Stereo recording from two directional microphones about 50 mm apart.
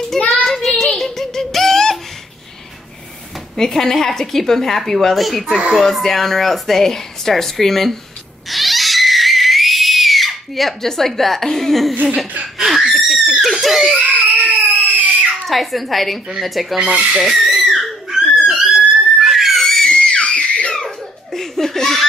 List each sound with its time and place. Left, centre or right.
0.1 s child singing: centre
3.5 s speech: centre
8.5 s screaming: centre
11.9 s laughter: right
12.5 s laughter: centre
13.9 s baby cry: right
15.3 s speech: centre
16.7 s speech: right
17.6 s a sound: centre
18.7 s a sound: right
19.2 s screaming: centre; by 20.7 s left
20.7 s laughter: centre